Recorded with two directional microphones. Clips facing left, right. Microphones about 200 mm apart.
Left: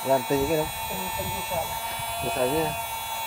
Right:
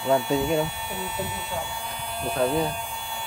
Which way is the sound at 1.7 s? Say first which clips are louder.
Even; 5° left (ahead or behind).